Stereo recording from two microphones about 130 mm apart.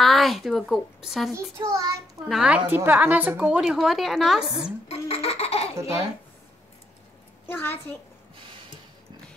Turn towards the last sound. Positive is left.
turn(degrees=15)  # may be behind; listen again after turning